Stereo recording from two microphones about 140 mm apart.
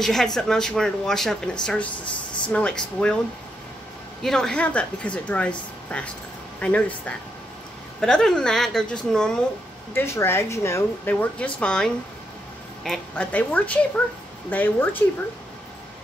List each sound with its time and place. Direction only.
0.0 s speech: 5° left (ahead or behind)
4.2 s speech: 5° left (ahead or behind)
6.6 s speech: 10° left (ahead or behind)
9.9 s speech: 15° left (ahead or behind)
13.1 s speech: 10° left (ahead or behind)